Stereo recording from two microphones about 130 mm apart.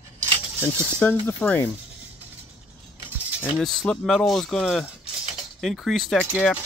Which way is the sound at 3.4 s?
5° left (ahead or behind).